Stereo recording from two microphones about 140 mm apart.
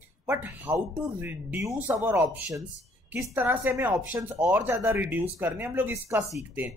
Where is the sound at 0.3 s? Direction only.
15° right (ahead or behind).